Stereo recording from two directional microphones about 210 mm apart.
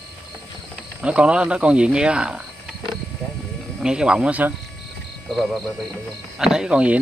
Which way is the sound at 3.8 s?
5° right (ahead or behind).